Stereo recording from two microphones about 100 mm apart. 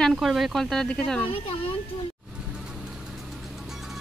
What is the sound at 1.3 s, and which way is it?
Speech, 70° left (ahead or behind).